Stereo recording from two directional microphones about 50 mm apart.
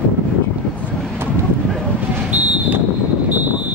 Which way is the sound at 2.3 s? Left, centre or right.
Right.